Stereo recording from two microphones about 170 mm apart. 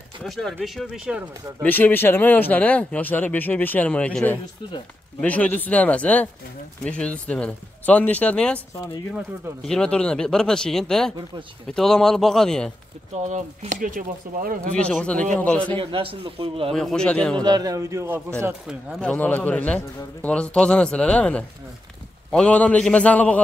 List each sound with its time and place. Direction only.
0.2 s speech: centre (ahead or behind)
1.6 s speech: 10° left (ahead or behind)
9.6 s speech: 5° left (ahead or behind)
13.1 s speech: 45° right (ahead or behind)
14.7 s speech: 5° left (ahead or behind)
15.8 s a man's voice: 30° right (ahead or behind)
16.7 s speech: 5° left (ahead or behind)
17.4 s a man's voice: 20° right (ahead or behind)
18.7 s speech: 5° left (ahead or behind)